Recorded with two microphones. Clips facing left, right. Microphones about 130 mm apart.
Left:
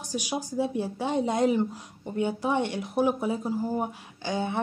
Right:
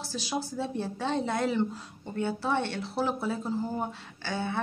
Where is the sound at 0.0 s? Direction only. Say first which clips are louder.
Left 2 dB; 15° left (ahead or behind).